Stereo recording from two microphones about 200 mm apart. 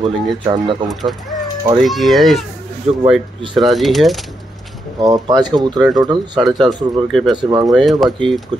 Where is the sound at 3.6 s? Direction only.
Centre (ahead or behind).